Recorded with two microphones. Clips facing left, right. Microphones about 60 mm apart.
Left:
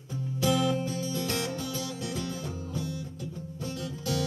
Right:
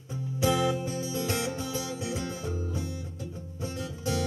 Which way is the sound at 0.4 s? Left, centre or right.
Right.